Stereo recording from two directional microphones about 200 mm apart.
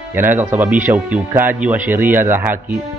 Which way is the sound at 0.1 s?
10° right (ahead or behind).